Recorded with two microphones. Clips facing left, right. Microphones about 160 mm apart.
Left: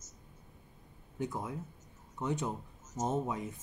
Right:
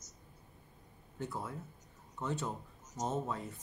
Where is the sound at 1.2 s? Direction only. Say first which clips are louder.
Left 4 dB; 15° left (ahead or behind).